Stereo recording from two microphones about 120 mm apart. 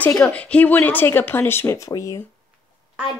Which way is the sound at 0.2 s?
10° left (ahead or behind).